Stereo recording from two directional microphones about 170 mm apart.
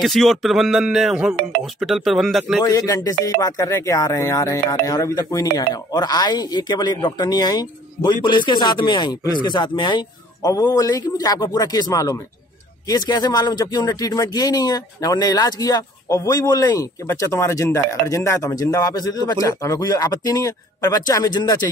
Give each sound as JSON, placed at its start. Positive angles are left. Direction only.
{"t": 0.0, "sound": "speech", "side_deg": 0}
{"t": 2.6, "sound": "speech", "side_deg": 20}